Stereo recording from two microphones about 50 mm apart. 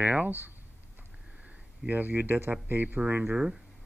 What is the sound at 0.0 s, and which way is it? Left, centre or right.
Speech, right.